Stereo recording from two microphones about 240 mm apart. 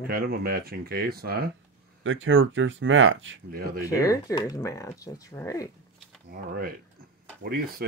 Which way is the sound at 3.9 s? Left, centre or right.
Centre.